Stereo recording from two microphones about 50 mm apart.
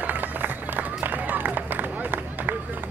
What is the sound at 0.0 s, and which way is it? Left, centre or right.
Run, right.